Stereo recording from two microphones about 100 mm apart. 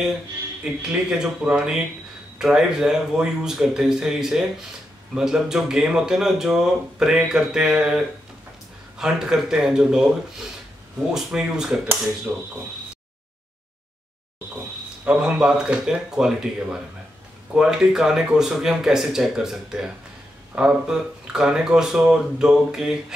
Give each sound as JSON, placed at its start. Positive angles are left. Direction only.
{"t": 0.9, "sound": "speech", "side_deg": -10}
{"t": 11.1, "sound": "speech", "side_deg": -5}
{"t": 15.0, "sound": "speech", "side_deg": -10}